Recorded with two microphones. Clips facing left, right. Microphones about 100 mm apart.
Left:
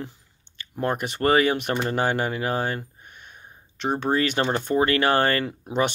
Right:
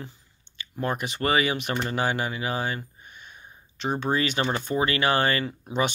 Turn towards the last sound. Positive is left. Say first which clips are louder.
# left 2 dB
turn(degrees=55)  # may be behind; listen again after turning